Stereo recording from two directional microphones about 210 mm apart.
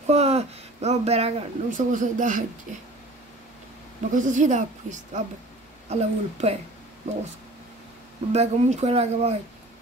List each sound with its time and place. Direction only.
0.0 s speech: 30° right (ahead or behind)
4.1 s a woman's voice: 35° right (ahead or behind)
8.3 s a woman's voice: 30° right (ahead or behind)